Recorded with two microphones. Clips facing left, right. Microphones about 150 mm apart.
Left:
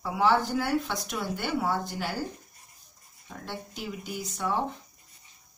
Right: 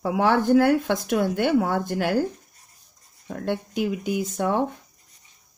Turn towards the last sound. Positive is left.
turn(degrees=-50)  # may be behind; listen again after turning